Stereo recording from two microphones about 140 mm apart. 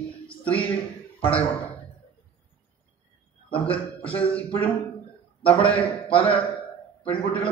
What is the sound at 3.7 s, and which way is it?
Speech, 10° left (ahead or behind).